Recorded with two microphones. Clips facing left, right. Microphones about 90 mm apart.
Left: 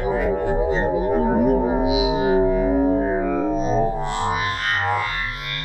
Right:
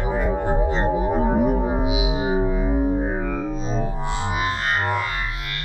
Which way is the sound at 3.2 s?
25° left (ahead or behind).